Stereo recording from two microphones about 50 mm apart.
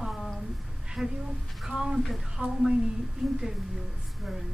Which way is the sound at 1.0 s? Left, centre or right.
Centre.